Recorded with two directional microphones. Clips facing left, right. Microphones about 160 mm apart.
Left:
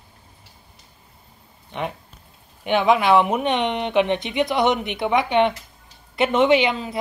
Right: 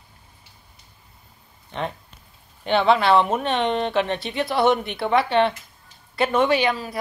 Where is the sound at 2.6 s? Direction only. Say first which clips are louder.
Even; 10° left (ahead or behind).